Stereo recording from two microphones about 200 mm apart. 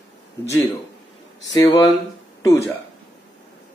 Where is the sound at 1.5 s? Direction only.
20° left (ahead or behind).